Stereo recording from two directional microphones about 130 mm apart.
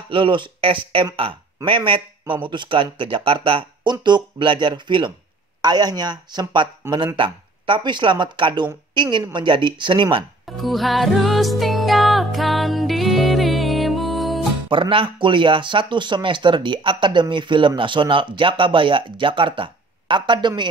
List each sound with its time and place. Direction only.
0.1 s a woman's voice: 40° right (ahead or behind)
10.6 s music: centre (ahead or behind)
14.7 s speech: 40° right (ahead or behind)